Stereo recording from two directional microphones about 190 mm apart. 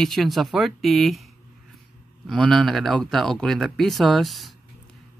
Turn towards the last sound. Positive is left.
turn(degrees=0)  # may be behind; listen again after turning